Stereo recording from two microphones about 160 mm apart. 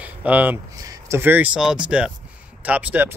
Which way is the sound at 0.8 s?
20° right (ahead or behind).